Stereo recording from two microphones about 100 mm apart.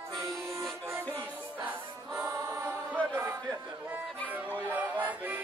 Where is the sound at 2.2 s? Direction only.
25° right (ahead or behind).